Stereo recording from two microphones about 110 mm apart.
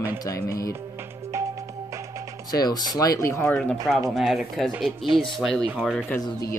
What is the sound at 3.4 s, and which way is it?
Speech, 15° left (ahead or behind).